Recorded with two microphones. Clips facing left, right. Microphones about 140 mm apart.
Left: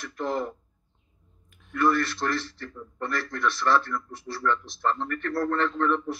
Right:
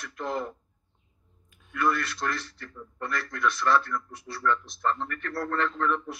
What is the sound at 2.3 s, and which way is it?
A man's voice, 30° left (ahead or behind).